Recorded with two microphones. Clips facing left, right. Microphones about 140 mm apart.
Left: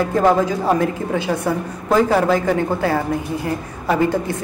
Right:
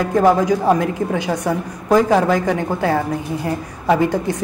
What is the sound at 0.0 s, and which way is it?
A woman's voice, 15° right (ahead or behind).